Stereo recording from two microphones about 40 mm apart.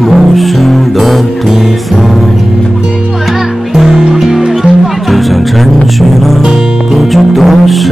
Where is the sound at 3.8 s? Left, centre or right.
Centre.